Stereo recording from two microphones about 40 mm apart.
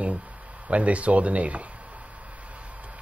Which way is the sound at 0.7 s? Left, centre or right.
Right.